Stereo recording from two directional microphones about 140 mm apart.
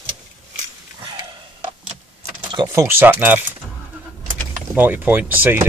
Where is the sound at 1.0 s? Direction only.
35° right (ahead or behind).